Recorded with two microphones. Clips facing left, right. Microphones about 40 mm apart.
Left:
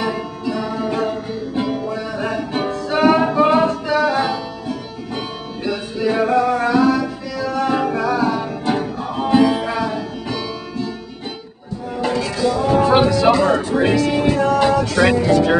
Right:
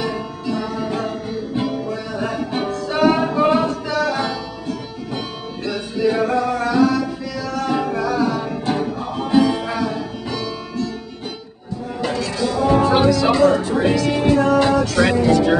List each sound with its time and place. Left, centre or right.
0.0 s music: centre
12.0 s music: centre
12.9 s speech: centre
14.0 s speech: centre